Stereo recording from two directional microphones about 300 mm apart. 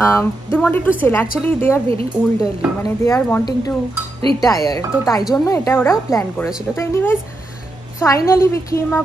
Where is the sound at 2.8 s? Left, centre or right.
Centre.